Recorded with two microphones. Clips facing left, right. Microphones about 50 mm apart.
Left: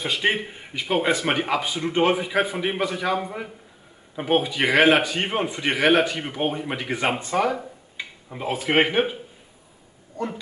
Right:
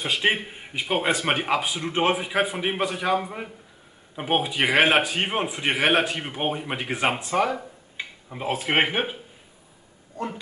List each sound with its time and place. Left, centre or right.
0.0 s speech: centre